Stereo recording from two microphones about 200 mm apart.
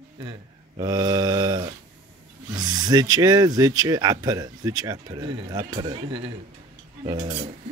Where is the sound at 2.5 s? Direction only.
20° right (ahead or behind).